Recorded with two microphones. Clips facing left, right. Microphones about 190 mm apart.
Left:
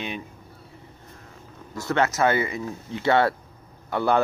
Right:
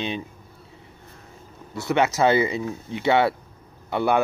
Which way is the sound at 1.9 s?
20° right (ahead or behind).